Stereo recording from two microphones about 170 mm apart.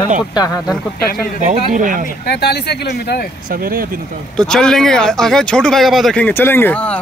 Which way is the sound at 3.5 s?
60° right (ahead or behind).